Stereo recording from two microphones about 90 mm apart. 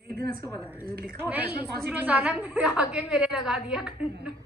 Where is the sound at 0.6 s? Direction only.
20° right (ahead or behind).